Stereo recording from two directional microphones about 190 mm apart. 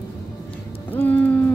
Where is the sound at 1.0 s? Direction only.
10° left (ahead or behind).